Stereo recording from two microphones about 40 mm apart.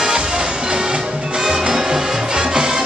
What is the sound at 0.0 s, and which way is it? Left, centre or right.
Music, centre.